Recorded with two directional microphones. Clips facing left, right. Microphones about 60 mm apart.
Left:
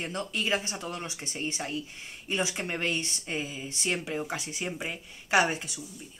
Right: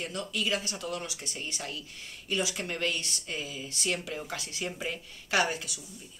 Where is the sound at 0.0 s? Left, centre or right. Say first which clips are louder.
Left 1 dB; left.